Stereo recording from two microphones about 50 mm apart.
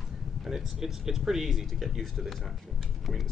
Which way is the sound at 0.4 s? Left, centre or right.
Centre.